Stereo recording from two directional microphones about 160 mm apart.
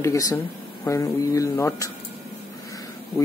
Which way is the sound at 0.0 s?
20° left (ahead or behind).